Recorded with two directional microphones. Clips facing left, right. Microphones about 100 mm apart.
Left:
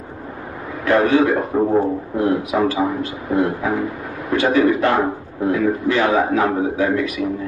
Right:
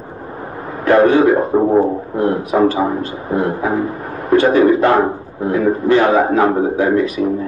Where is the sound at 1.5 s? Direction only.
35° right (ahead or behind).